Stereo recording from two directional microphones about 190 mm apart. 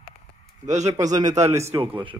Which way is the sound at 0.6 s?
35° right (ahead or behind).